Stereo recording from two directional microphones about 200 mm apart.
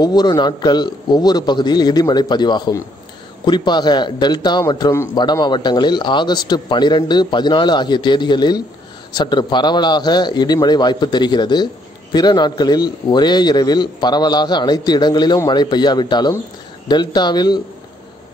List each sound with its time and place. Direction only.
0.0 s a man's voice: 20° left (ahead or behind)